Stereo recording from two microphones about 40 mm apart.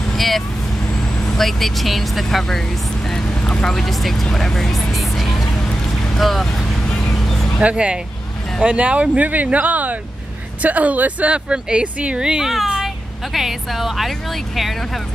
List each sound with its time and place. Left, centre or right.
0.1 s vehicle: centre
1.2 s speech: centre
3.4 s speech: left
3.7 s speech: centre
7.2 s vehicle: centre
7.6 s speech: right
9.3 s speech: right
12.2 s speech: centre
12.8 s speech: centre